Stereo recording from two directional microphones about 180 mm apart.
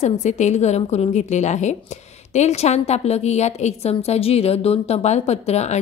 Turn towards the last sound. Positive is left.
turn(degrees=35)  # may be behind; listen again after turning